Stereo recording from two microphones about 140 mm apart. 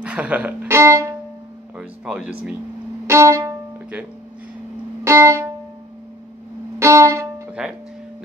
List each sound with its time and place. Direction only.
0.0 s speech: 10° right (ahead or behind)
1.8 s speech: 10° right (ahead or behind)
3.1 s violin: 20° right (ahead or behind)
5.0 s music: 20° right (ahead or behind)
6.8 s music: 20° right (ahead or behind)